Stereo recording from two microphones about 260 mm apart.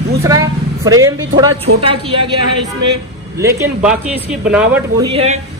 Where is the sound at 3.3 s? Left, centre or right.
Centre.